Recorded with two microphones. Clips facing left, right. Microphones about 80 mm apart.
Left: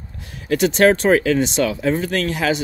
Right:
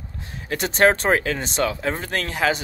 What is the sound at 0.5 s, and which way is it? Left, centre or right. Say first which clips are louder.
Speech: left 4 dB; right.